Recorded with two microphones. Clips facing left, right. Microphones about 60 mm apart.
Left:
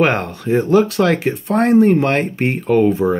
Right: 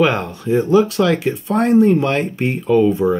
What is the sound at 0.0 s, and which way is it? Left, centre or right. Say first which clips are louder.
Speech: even; left.